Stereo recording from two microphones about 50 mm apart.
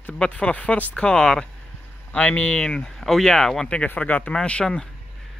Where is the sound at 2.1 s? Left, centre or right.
Left.